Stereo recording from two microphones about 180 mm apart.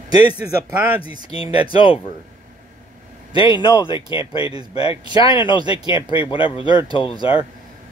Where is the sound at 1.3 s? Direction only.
30° left (ahead or behind).